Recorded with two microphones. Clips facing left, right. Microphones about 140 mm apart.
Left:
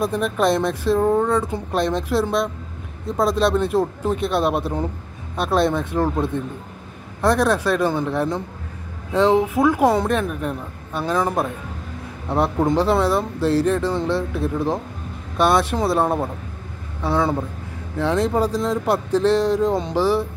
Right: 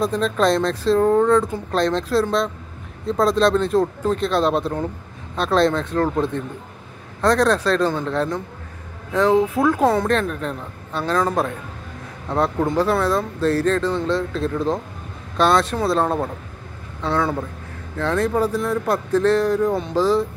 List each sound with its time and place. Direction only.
0.0 s speech: 15° left (ahead or behind)